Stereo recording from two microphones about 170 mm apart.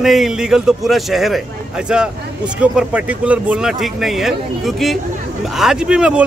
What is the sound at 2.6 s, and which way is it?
Speech, 5° right (ahead or behind).